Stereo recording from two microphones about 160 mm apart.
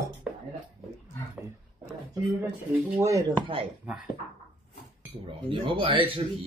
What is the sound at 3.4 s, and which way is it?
Speech, 35° right (ahead or behind).